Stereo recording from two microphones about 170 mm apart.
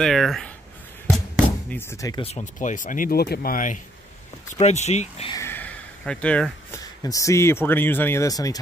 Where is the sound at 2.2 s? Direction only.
35° left (ahead or behind).